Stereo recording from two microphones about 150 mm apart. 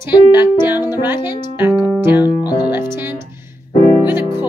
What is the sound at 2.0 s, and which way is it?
Music, 15° right (ahead or behind).